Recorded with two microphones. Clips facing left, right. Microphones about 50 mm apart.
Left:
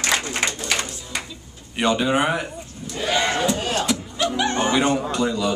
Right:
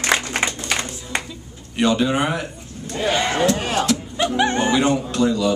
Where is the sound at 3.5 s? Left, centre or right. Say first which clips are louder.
Right 2 dB; right.